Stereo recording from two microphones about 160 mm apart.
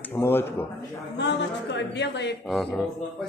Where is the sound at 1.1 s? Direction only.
90° left.